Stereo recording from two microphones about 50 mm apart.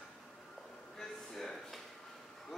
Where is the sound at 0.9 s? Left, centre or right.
Centre.